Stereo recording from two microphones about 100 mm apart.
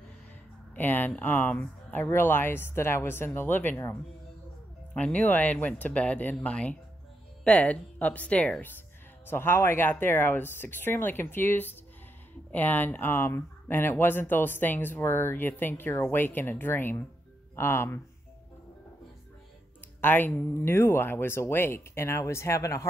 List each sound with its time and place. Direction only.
0.7 s speech: 20° left (ahead or behind)
4.9 s speech: 10° left (ahead or behind)
20.0 s speech: 20° left (ahead or behind)